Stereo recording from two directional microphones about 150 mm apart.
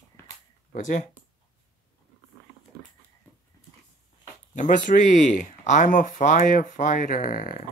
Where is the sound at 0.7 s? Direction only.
55° left (ahead or behind).